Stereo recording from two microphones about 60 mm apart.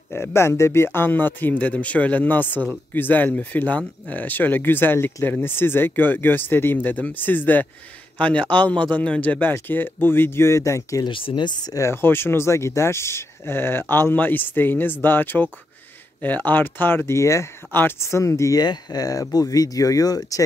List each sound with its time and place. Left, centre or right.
0.1 s speech: left
2.5 s speech: right
2.9 s speech: left
11.9 s speech: left
17.1 s speech: left